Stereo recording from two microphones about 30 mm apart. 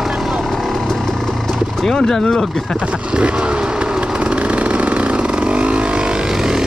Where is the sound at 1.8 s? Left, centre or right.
Centre.